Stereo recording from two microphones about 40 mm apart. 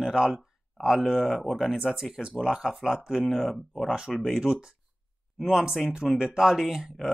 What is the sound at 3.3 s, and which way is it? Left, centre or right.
Speech, centre.